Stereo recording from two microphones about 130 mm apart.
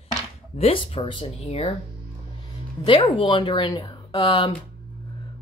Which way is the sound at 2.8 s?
40° left (ahead or behind).